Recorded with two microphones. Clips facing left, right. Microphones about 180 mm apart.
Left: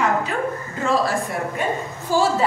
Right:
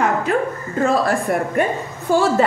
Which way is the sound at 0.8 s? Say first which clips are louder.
Right 3 dB; 55° right (ahead or behind).